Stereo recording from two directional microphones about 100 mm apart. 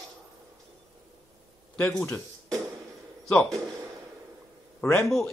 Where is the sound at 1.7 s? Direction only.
15° left (ahead or behind).